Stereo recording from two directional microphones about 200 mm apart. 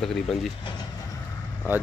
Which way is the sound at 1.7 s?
10° right (ahead or behind).